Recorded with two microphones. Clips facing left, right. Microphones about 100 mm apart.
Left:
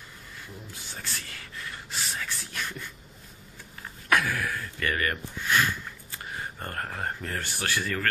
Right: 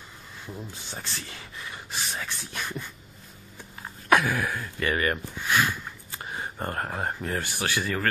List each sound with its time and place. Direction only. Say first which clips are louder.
0.9 s speech: right 1 dB; 25° right (ahead or behind)
3.8 s speech: right 3 dB; 25° right (ahead or behind)